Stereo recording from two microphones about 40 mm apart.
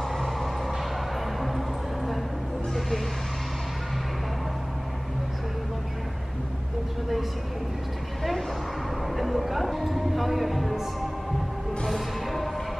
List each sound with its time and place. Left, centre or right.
0.1 s vehicle: centre
8.2 s vehicle: centre
9.0 s music: centre